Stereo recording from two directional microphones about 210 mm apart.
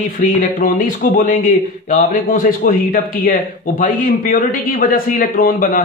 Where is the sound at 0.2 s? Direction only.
40° left (ahead or behind).